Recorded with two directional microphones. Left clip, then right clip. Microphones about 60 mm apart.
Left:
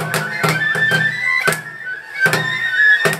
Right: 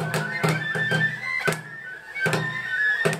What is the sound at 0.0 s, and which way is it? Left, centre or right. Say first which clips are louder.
Music: left 7 dB; left.